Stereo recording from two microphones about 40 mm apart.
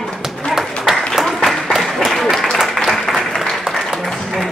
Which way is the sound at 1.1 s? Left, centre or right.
Centre.